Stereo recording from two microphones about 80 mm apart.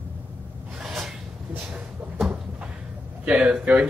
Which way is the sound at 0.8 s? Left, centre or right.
Centre.